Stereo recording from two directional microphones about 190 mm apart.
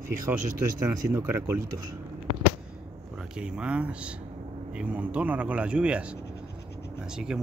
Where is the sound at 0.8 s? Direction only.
10° right (ahead or behind).